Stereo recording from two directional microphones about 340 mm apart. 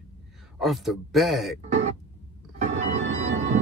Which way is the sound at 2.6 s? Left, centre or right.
Centre.